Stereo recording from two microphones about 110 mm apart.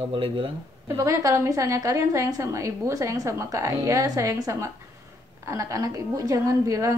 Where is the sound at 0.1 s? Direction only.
55° right (ahead or behind).